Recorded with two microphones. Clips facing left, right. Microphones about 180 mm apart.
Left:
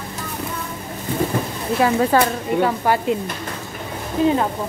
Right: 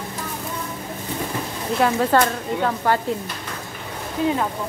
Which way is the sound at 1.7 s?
10° left (ahead or behind).